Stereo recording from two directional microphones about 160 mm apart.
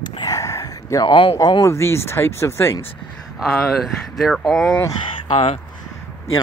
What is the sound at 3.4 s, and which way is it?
Speech, centre (ahead or behind).